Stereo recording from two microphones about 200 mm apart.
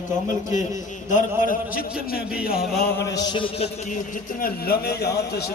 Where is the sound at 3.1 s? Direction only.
20° left (ahead or behind).